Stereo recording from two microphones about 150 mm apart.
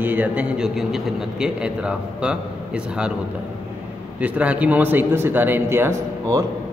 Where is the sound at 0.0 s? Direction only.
10° right (ahead or behind).